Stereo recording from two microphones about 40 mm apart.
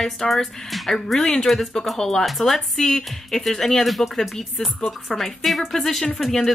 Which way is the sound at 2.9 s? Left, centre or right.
Centre.